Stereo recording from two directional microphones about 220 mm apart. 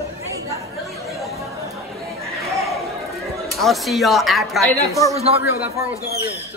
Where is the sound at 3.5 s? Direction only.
Centre (ahead or behind).